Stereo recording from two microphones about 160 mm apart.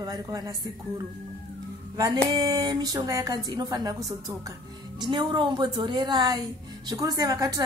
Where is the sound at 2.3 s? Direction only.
25° right (ahead or behind).